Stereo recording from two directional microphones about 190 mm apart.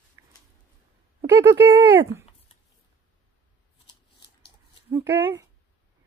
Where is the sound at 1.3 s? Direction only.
10° right (ahead or behind).